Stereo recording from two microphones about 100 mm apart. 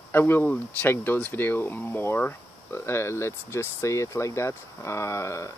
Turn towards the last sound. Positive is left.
turn(degrees=30)  # may be behind; listen again after turning